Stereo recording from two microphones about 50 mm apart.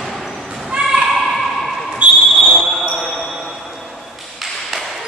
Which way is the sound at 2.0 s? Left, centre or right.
Right.